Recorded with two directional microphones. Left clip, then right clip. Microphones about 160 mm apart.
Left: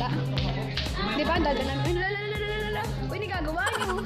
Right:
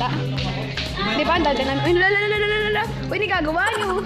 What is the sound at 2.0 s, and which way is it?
Music, 55° right (ahead or behind).